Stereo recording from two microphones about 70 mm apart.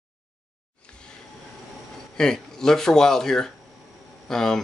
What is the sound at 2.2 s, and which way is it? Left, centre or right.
Speech, centre.